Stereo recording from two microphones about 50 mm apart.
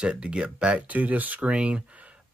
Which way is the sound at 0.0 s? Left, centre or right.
Right.